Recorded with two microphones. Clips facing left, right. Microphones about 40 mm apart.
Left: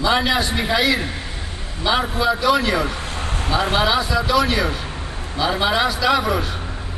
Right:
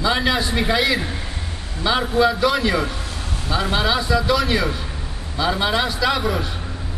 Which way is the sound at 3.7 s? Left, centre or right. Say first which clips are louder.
Left 2 dB; centre.